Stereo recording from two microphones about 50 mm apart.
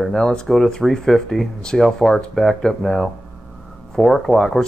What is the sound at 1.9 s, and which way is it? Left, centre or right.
Speech, centre.